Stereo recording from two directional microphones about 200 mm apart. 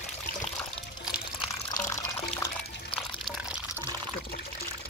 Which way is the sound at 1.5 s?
15° left (ahead or behind).